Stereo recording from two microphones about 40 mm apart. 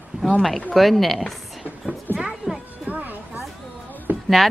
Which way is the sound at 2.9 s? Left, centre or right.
Right.